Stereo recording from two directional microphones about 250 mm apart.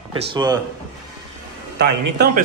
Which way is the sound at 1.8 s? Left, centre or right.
Right.